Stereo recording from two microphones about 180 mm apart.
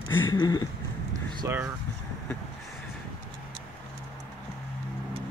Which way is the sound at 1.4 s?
15° right (ahead or behind).